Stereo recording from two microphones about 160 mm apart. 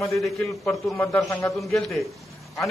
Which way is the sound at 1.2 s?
20° left (ahead or behind).